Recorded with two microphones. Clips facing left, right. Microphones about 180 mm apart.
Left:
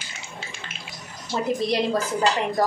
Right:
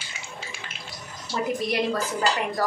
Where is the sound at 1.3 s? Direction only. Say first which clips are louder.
Left 2 dB; 25° left (ahead or behind).